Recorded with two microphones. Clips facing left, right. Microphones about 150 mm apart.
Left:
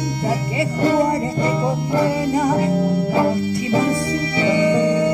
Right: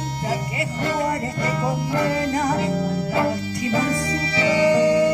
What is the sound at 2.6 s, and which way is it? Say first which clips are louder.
Music: left 4 dB; 55° left (ahead or behind).